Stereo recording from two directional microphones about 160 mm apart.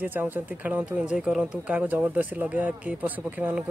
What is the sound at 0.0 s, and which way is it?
Speech, 10° right (ahead or behind).